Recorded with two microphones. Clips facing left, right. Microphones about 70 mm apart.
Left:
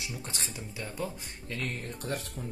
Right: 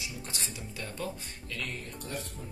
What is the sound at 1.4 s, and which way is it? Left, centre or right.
Speech, left.